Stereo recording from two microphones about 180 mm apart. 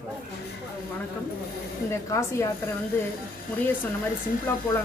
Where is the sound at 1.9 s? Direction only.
15° left (ahead or behind).